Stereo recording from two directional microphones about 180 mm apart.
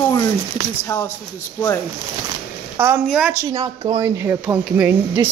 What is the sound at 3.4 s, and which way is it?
Speech, 25° right (ahead or behind).